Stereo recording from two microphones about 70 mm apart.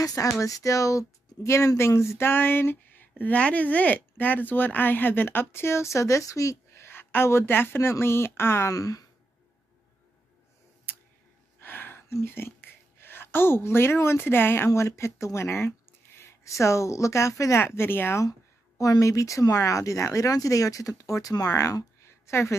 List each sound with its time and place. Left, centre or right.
0.0 s speech: left
8.7 s speech: left
11.6 s a sound: left
12.1 s a woman's voice: left
14.7 s speech: left
18.8 s speech: left